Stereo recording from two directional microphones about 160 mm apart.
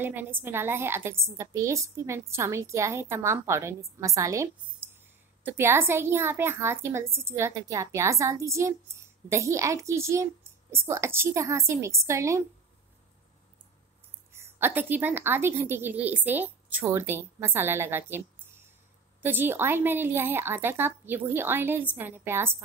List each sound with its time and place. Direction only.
0.0 s a woman's voice: 15° right (ahead or behind)
14.3 s a woman's voice: 15° right (ahead or behind)
19.2 s a woman's voice: 15° right (ahead or behind)